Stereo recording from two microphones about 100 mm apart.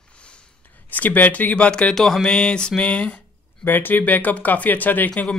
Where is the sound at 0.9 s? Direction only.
15° left (ahead or behind).